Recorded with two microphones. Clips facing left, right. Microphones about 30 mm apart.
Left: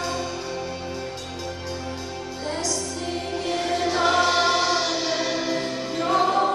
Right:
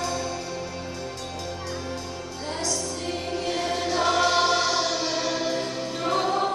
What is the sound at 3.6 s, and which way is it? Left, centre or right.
Choir, centre.